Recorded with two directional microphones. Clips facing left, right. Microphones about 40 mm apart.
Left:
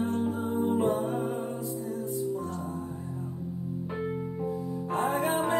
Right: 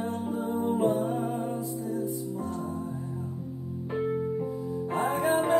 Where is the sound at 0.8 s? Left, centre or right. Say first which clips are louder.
Right 1 dB; left.